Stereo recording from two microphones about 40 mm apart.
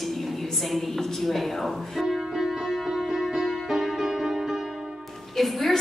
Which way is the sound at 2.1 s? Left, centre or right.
Centre.